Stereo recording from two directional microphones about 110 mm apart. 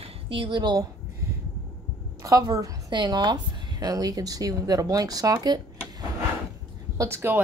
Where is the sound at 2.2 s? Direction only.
35° right (ahead or behind).